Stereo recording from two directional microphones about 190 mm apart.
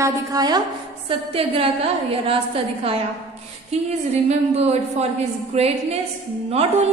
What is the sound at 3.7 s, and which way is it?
Mantra, 35° right (ahead or behind).